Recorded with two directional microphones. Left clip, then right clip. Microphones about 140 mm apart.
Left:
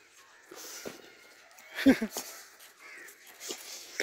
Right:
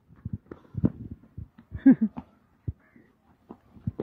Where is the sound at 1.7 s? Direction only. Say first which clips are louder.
Right 4 dB; 40° left (ahead or behind).